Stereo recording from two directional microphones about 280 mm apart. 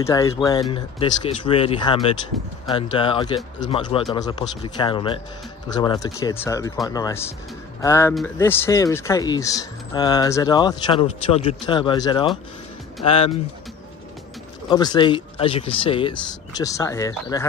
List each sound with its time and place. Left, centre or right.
0.0 s speech: centre
14.7 s speech: centre